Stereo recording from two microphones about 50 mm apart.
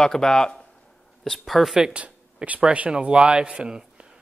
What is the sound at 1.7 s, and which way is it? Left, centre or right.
Speech, centre.